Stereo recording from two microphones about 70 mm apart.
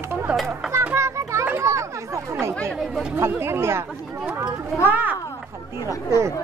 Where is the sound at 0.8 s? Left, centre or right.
Right.